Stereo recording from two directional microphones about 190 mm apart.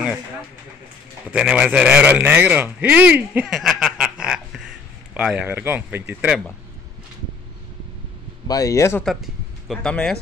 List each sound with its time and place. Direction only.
1.2 s speech: 5° right (ahead or behind)
8.5 s speech: 20° left (ahead or behind)
9.0 s speech: centre (ahead or behind)